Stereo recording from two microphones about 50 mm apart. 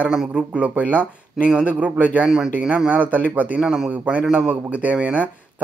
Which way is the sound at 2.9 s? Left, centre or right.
Right.